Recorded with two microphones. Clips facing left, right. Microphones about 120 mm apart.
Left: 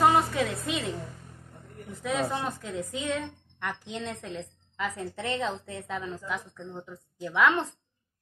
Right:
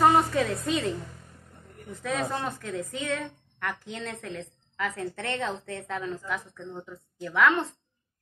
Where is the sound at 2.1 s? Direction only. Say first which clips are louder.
Left 1 dB; 10° left (ahead or behind).